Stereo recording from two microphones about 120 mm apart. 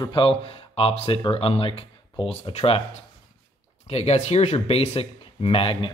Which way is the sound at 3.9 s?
60° left (ahead or behind).